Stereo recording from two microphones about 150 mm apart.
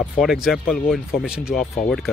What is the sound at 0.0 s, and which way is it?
Speech, centre (ahead or behind).